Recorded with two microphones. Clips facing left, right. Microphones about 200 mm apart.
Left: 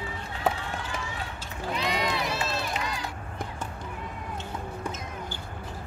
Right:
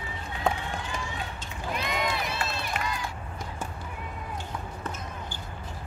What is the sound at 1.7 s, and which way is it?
Run, 55° right (ahead or behind).